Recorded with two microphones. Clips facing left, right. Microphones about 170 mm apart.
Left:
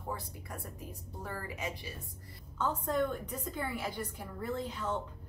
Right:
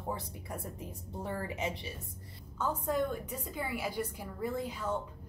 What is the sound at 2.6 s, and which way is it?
A woman's voice, 10° right (ahead or behind).